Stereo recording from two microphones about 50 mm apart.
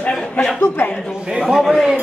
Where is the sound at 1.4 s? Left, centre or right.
Centre.